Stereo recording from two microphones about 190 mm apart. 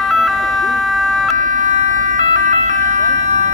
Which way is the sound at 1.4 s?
45° right (ahead or behind).